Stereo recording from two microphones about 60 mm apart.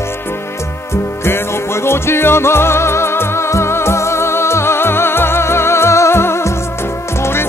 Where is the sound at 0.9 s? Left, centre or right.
Left.